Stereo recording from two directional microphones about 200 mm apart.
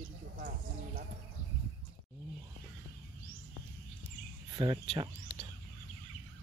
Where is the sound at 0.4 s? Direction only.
40° right (ahead or behind).